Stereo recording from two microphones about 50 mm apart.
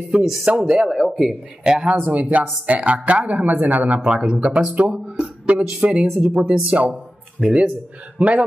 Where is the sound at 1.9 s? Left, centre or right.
Right.